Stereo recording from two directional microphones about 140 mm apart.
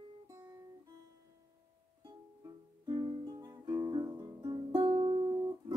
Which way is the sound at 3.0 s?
25° right (ahead or behind).